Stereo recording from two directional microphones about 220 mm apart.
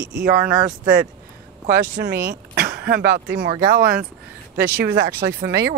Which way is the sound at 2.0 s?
50° right (ahead or behind).